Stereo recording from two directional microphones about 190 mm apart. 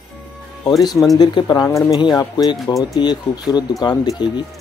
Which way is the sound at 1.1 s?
20° left (ahead or behind).